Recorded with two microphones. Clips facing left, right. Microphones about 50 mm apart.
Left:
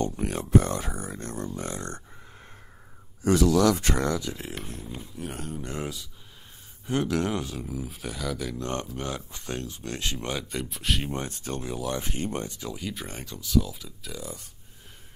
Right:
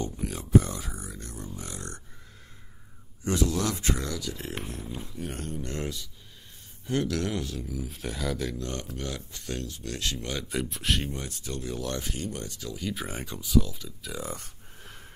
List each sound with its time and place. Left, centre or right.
0.2 s speech: left
3.3 s speech: left
4.1 s speech: left
4.4 s speech: centre
6.9 s speech: centre
7.9 s speech: centre
8.5 s speech: left
10.5 s speech: centre
11.1 s speech: left
11.6 s speech: centre
12.0 s speech: left
12.4 s speech: centre
13.6 s speech: centre
14.2 s speech: right